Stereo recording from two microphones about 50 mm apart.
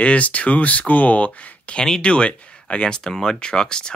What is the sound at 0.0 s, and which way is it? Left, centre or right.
Speech, left.